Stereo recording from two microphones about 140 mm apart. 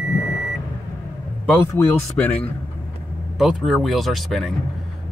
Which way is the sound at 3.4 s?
Centre (ahead or behind).